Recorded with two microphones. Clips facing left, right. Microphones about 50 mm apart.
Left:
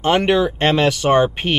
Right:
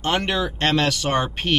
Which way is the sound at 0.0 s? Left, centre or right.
Centre.